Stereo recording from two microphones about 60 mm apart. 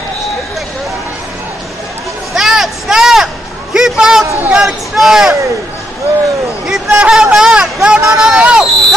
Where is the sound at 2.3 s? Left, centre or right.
Centre.